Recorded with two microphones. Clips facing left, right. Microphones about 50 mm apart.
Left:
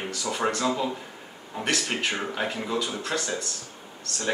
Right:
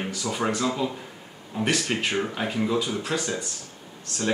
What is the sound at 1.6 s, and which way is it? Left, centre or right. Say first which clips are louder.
Speech: right 1 dB; centre.